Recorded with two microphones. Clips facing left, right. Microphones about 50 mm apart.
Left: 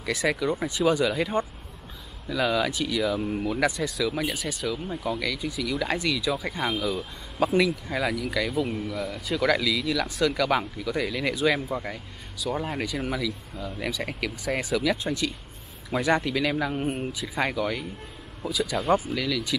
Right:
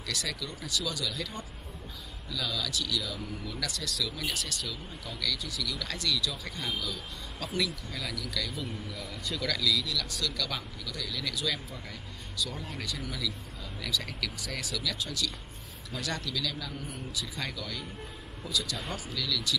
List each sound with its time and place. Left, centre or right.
0.0 s speech: left
4.8 s speech: left
8.8 s speech: centre
9.4 s speech: left
16.7 s speech: left
17.4 s speech: left
18.9 s speech: left